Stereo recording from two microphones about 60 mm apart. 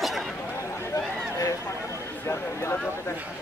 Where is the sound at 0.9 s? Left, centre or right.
Left.